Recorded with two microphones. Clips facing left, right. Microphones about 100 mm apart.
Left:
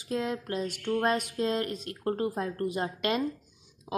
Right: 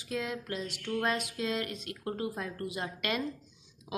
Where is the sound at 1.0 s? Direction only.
35° left (ahead or behind).